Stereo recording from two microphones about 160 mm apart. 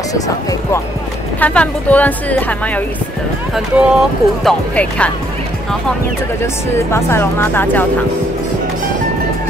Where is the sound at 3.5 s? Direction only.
Centre (ahead or behind).